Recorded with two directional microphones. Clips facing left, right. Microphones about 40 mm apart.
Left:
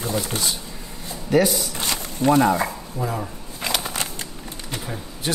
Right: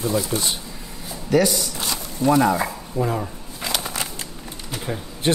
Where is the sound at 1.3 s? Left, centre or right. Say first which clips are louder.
Even; centre.